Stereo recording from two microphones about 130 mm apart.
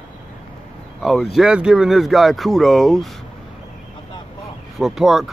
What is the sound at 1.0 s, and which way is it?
Speech, centre (ahead or behind).